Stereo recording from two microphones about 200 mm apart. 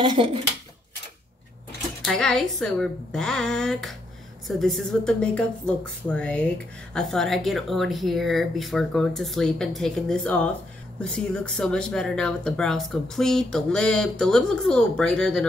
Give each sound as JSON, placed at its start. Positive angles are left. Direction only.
{"t": 0.0, "sound": "speech", "side_deg": -25}
{"t": 2.0, "sound": "speech", "side_deg": 5}